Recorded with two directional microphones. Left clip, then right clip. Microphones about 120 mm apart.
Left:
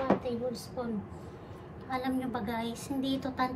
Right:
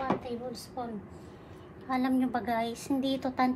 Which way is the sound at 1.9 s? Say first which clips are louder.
Right 4 dB; 65° right (ahead or behind).